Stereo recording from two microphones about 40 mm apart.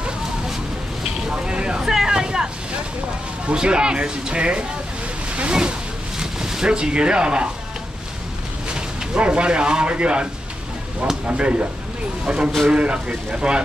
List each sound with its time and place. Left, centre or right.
1.0 s vehicle: right
1.8 s vehicle: centre
3.4 s speech: right
6.1 s speech: centre
8.7 s speech: right
11.2 s speech: right